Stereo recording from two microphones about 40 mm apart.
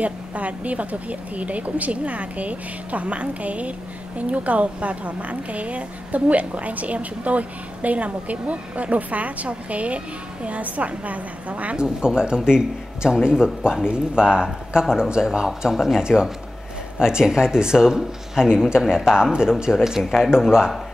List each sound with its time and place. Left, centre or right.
0.0 s a woman's voice: right
11.7 s speech: right